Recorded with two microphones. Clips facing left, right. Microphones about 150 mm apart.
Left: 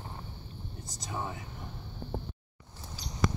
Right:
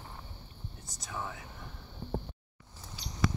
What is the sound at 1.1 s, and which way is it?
Whispering, 25° left (ahead or behind).